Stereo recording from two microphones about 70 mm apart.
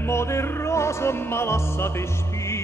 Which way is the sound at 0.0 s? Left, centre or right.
Left.